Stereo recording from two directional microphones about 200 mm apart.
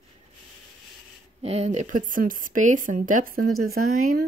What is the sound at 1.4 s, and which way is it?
Speech, 35° right (ahead or behind).